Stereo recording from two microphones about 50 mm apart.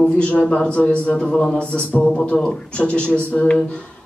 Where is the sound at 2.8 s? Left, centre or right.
Left.